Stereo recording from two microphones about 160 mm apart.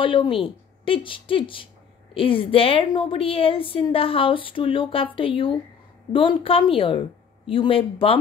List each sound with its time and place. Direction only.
0.0 s a woman's voice: 30° left (ahead or behind)